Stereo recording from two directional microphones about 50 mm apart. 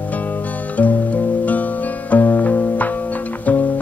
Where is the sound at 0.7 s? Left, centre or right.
Left.